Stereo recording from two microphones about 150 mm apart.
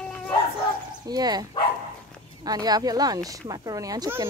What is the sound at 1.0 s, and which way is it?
Speech, 25° right (ahead or behind).